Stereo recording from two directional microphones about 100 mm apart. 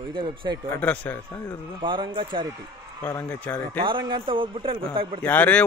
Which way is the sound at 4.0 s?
55° right (ahead or behind).